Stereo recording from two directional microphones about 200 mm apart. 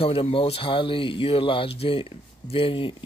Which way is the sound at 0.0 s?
30° left (ahead or behind).